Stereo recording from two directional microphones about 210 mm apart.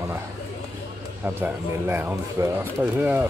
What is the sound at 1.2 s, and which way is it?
Speech, 10° right (ahead or behind).